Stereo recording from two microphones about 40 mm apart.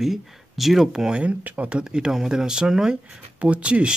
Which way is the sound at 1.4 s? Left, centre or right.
Right.